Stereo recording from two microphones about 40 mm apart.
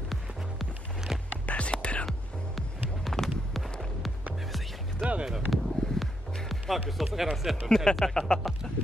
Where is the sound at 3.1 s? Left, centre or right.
Centre.